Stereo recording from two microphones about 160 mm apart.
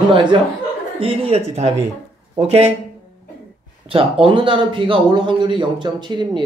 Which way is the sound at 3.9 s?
35° right (ahead or behind).